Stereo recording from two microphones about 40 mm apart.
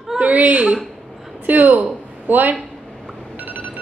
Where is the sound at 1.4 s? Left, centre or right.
Right.